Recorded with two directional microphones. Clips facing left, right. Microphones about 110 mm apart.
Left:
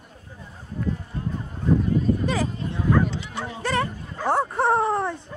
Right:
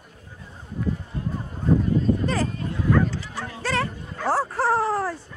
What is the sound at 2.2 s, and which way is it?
Dog, 10° left (ahead or behind).